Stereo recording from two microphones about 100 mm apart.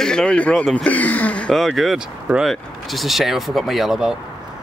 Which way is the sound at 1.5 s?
Centre (ahead or behind).